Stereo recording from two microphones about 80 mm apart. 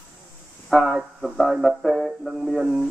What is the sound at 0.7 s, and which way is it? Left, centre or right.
Speech, centre.